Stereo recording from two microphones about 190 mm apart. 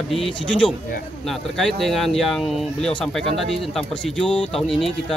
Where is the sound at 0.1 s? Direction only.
5° left (ahead or behind).